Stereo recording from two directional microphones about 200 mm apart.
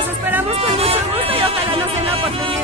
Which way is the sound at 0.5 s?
30° right (ahead or behind).